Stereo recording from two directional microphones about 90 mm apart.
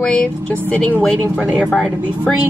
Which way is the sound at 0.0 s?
15° left (ahead or behind).